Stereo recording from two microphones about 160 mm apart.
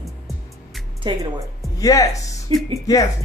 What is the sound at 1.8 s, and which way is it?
Speech, 20° left (ahead or behind).